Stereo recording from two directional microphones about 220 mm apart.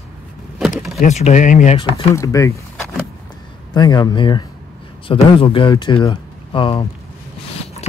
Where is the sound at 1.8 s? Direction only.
15° left (ahead or behind).